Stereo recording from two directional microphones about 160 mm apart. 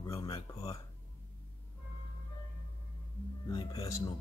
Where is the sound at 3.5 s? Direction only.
35° left (ahead or behind).